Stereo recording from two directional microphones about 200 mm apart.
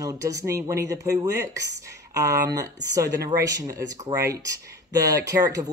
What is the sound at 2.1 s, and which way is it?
Speech, 15° right (ahead or behind).